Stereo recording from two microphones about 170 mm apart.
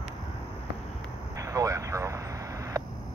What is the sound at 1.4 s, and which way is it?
Vehicle, 20° right (ahead or behind).